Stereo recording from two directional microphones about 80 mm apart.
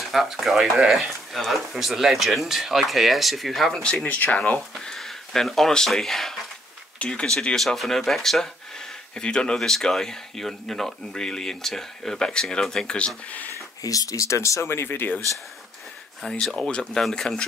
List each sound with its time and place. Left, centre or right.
0.0 s speech: centre
3.8 s speech: centre
4.7 s speech: centre
13.8 s speech: left
16.2 s speech: centre